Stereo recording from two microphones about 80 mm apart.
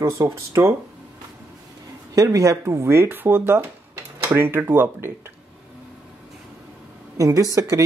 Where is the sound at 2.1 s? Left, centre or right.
Right.